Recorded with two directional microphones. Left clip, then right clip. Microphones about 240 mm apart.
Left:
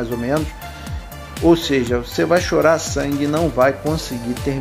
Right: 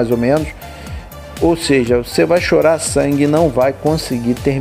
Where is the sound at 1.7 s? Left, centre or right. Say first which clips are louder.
Right 6 dB; right.